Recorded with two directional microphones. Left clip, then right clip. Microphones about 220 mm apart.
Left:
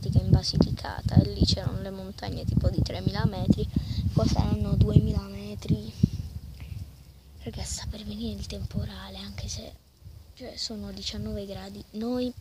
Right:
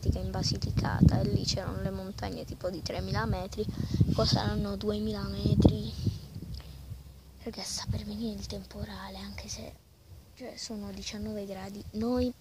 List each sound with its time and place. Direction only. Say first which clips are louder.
0.0 s speech: left 4 dB; 5° left (ahead or behind)
7.4 s a woman's voice: right 1 dB; 10° left (ahead or behind)
11.9 s speech: even; 5° left (ahead or behind)